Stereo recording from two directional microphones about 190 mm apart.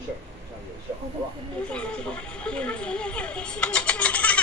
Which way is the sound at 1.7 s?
5° left (ahead or behind).